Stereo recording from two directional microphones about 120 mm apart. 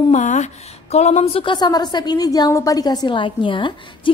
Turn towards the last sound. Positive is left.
turn(degrees=45)  # may be behind; listen again after turning